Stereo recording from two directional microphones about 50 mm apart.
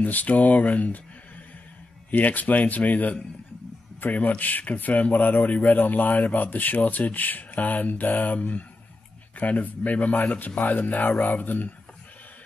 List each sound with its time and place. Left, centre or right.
0.0 s speech: left
2.0 s a man's voice: left